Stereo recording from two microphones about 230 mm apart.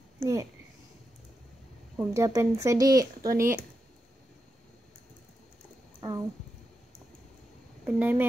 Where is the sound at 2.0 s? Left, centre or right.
Centre.